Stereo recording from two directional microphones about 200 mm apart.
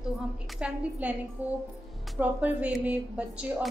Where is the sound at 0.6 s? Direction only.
5° right (ahead or behind).